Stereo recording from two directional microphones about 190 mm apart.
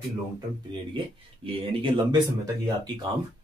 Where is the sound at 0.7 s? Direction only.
25° right (ahead or behind).